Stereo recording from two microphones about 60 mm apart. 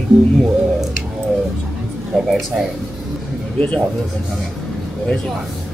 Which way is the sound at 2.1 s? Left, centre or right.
Centre.